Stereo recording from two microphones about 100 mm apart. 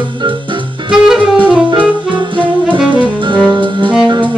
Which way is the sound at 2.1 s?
55° right (ahead or behind).